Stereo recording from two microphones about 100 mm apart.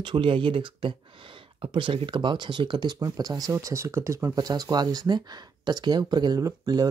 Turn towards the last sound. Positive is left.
turn(degrees=-40)  # may be behind; listen again after turning